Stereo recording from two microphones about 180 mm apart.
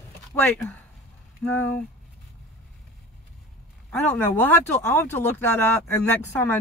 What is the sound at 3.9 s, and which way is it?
Speech, 10° left (ahead or behind).